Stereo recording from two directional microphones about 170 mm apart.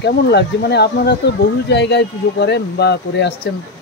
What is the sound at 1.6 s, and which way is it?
Speech, 90° left.